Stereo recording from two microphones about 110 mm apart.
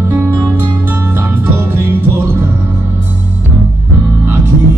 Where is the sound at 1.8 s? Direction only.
20° right (ahead or behind).